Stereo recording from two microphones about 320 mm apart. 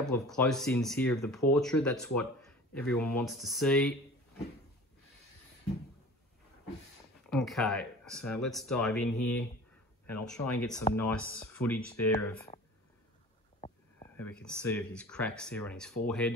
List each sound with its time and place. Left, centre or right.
0.1 s speech: centre
7.2 s speech: centre
13.6 s a sound: centre
13.9 s speech: centre